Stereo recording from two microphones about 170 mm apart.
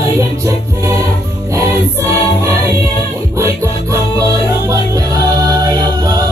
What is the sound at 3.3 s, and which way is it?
Music, 15° right (ahead or behind).